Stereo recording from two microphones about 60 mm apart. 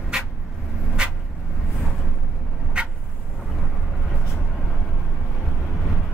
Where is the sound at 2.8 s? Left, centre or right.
Centre.